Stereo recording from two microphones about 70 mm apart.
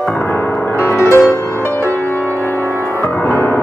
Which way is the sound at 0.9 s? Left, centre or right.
Left.